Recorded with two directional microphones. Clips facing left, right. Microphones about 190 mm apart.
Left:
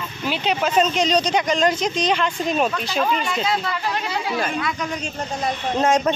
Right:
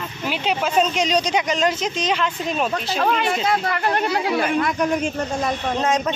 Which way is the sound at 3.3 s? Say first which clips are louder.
Right 2 dB; 55° right (ahead or behind).